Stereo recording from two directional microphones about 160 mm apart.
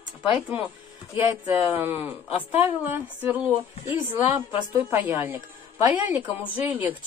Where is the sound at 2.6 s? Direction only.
15° right (ahead or behind).